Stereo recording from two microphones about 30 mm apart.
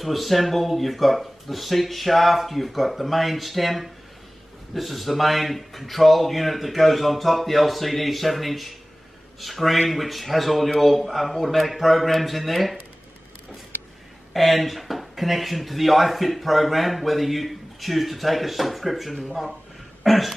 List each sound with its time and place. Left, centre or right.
0.0 s speech: centre
14.3 s speech: centre
20.0 s a sound: centre